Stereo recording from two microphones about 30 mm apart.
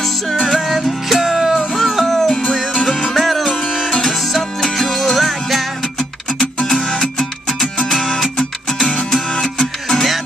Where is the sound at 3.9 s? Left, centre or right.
Centre.